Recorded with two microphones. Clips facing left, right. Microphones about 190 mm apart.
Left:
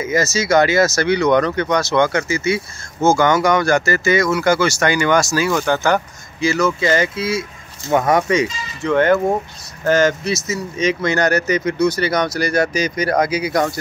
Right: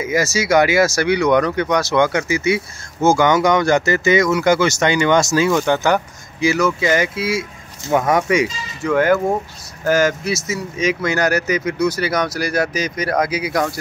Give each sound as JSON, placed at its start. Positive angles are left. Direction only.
{"t": 0.0, "sound": "speech", "side_deg": -15}